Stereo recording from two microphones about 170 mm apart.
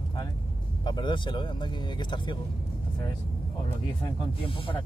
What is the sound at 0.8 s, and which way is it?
Speech, 25° left (ahead or behind).